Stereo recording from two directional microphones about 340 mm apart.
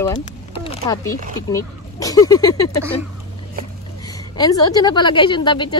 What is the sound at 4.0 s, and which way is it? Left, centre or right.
A woman's voice, centre.